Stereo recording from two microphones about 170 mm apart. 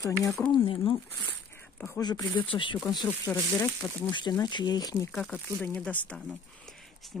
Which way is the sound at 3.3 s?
10° left (ahead or behind).